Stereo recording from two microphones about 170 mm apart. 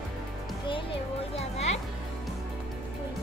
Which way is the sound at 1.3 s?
40° left (ahead or behind).